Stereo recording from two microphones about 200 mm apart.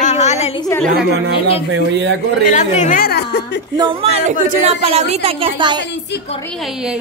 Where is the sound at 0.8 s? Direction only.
55° right (ahead or behind).